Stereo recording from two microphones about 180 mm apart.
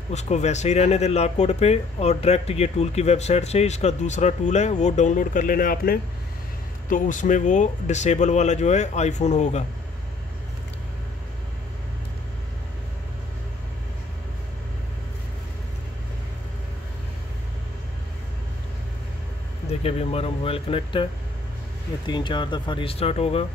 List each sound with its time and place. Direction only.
0.1 s speech: 40° left (ahead or behind)
19.8 s speech: 35° left (ahead or behind)